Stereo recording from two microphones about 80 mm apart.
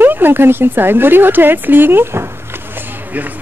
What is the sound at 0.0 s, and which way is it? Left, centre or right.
A woman's voice, right.